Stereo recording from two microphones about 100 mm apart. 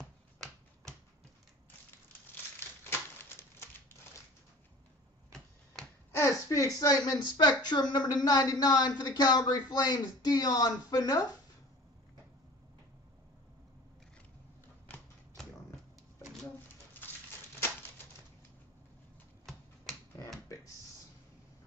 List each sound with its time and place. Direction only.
2.8 s a sound: 25° left (ahead or behind)
5.3 s tick-tock: 5° left (ahead or behind)
6.1 s a man's voice: 30° left (ahead or behind)